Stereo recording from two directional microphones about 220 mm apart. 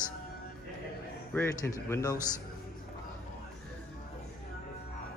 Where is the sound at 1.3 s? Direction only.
10° left (ahead or behind).